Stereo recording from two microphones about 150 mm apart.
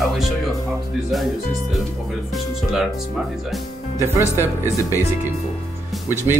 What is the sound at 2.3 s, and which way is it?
Speech, 5° right (ahead or behind).